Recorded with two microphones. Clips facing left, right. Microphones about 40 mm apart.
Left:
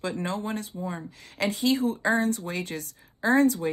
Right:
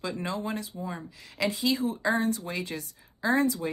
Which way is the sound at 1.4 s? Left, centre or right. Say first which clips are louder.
Left 3 dB; left.